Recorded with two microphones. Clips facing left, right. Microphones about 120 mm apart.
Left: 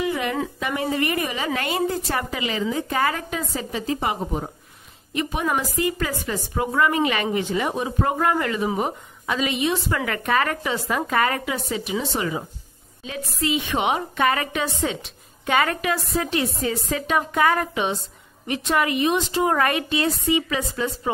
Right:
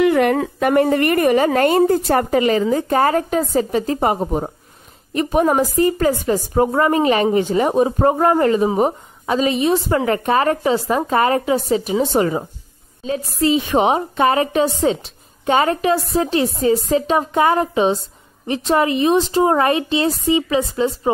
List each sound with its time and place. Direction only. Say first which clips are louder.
0.0 s a woman's voice: right 10 dB; 60° right (ahead or behind); by 21.1 s 25° right (ahead or behind)